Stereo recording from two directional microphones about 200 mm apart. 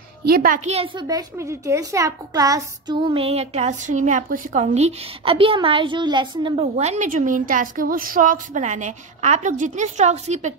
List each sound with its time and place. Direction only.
0.2 s a child's voice: 50° right (ahead or behind)
0.7 s a child's voice: 30° right (ahead or behind)
1.0 s a child's voice: 15° right (ahead or behind); by 10.5 s 35° right (ahead or behind)